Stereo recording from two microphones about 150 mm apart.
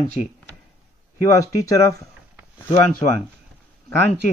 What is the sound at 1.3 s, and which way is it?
Speech, 20° left (ahead or behind).